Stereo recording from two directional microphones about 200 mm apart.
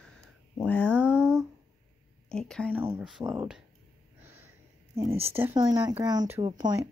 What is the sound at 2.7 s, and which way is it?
Speech, 10° right (ahead or behind).